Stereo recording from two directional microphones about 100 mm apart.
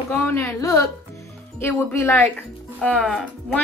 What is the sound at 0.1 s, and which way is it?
Speech, 15° left (ahead or behind).